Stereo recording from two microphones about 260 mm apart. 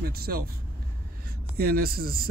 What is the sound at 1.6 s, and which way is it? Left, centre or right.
Speech, right.